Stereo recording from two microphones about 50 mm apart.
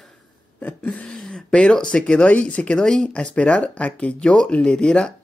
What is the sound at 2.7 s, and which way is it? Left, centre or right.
Speech, centre.